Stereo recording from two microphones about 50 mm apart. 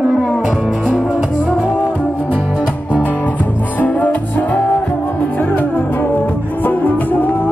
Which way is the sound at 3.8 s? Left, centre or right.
Left.